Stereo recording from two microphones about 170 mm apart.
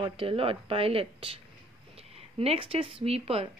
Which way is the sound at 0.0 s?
35° right (ahead or behind).